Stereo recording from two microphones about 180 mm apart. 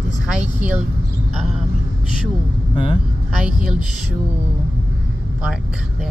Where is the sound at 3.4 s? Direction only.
5° right (ahead or behind).